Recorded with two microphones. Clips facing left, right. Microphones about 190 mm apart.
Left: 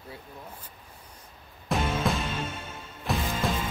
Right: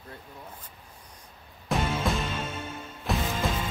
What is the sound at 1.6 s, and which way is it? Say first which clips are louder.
Music: even; centre (ahead or behind).